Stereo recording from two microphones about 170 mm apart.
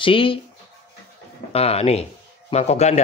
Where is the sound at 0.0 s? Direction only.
30° left (ahead or behind).